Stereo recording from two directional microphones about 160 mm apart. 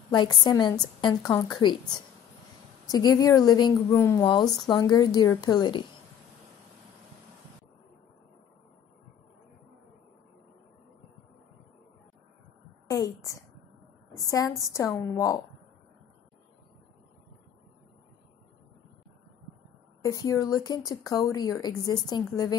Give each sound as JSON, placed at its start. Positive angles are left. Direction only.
{"t": 0.1, "sound": "speech", "side_deg": 25}
{"t": 2.9, "sound": "speech", "side_deg": 25}
{"t": 12.8, "sound": "a sound", "side_deg": 20}
{"t": 14.1, "sound": "speech", "side_deg": 20}
{"t": 20.0, "sound": "speech", "side_deg": 20}